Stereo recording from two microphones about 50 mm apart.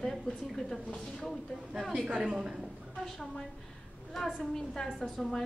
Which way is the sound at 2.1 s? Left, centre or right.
Centre.